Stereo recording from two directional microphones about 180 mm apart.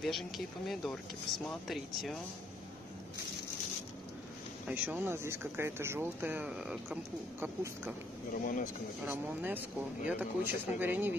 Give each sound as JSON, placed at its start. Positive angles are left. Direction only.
{"t": 0.7, "sound": "speech", "side_deg": 0}
{"t": 4.6, "sound": "speech", "side_deg": -10}
{"t": 8.3, "sound": "speech", "side_deg": 50}
{"t": 9.0, "sound": "speech", "side_deg": -10}